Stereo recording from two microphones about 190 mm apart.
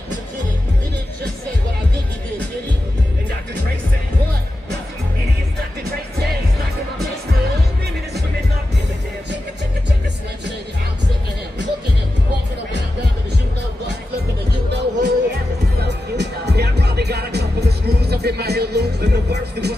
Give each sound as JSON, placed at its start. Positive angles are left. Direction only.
{"t": 14.7, "sound": "music", "side_deg": -65}